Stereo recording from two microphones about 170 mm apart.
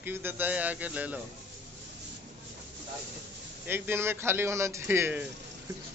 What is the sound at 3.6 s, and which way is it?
Speech, 15° right (ahead or behind).